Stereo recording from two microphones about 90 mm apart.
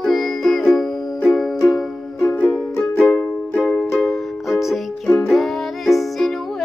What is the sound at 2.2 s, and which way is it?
Music, 20° left (ahead or behind).